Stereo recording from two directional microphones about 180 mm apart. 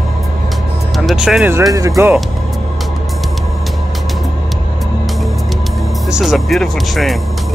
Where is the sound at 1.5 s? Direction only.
20° right (ahead or behind).